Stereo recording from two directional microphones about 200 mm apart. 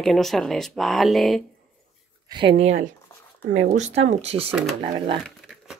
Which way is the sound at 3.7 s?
35° right (ahead or behind).